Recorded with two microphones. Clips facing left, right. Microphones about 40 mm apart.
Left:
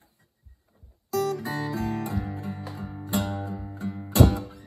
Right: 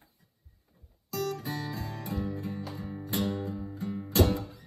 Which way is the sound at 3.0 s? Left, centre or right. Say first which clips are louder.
Left 3 dB; left.